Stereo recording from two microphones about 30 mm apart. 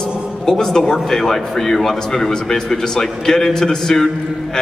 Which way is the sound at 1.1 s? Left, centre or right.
Centre.